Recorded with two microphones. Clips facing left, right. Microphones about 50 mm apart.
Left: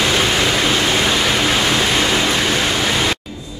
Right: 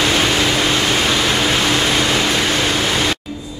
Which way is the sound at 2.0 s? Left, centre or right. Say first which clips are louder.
Even; centre.